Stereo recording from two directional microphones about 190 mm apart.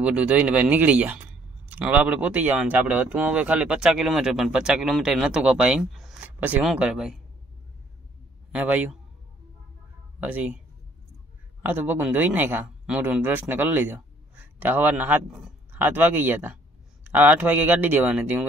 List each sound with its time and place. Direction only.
0.0 s speech: 5° right (ahead or behind)
8.5 s a man's voice: 5° right (ahead or behind)
10.2 s speech: 10° right (ahead or behind)
11.6 s speech: 10° right (ahead or behind)